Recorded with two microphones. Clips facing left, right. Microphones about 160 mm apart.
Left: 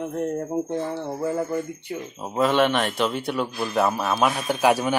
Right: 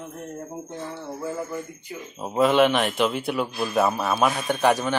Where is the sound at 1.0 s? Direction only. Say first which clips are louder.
Left 5 dB; 35° left (ahead or behind).